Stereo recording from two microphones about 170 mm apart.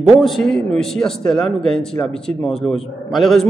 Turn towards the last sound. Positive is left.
turn(degrees=0)  # may be behind; listen again after turning